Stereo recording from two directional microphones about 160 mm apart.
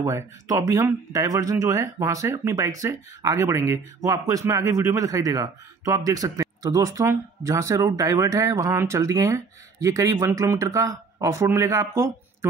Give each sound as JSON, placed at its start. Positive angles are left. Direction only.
{"t": 0.0, "sound": "speech", "side_deg": -20}